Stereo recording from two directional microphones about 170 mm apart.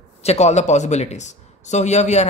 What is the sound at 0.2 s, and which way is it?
A man's voice, 40° left (ahead or behind).